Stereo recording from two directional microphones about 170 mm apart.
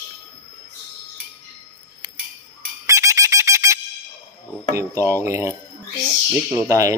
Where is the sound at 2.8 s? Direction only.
20° right (ahead or behind).